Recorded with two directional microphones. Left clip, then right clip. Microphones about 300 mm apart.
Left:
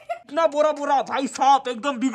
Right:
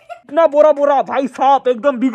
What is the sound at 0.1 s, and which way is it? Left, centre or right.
Speech, centre.